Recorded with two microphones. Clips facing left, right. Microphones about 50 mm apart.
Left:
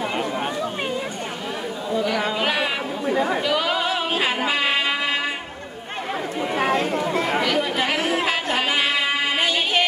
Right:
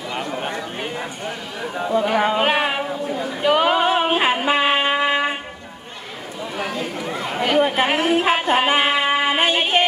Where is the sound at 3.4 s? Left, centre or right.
Right.